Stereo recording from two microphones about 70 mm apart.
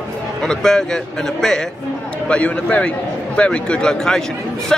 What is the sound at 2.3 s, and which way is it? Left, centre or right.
A man's voice, centre.